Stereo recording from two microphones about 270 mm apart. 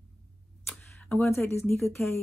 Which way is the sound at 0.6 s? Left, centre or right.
Centre.